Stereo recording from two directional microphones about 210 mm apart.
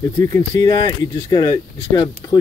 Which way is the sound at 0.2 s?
15° left (ahead or behind).